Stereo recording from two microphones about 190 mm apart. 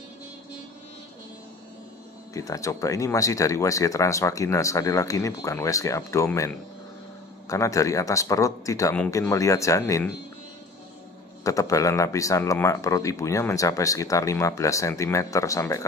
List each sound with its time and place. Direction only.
2.3 s speech: 15° left (ahead or behind)
11.4 s speech: 15° left (ahead or behind)